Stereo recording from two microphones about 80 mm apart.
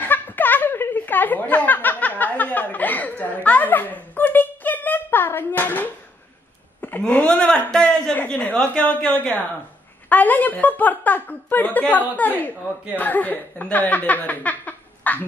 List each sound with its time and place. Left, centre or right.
0.1 s snicker: left
3.4 s a sound: left
7.1 s a man's voice: centre